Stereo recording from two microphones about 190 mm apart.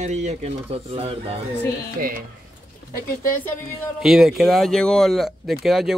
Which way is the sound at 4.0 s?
Centre (ahead or behind).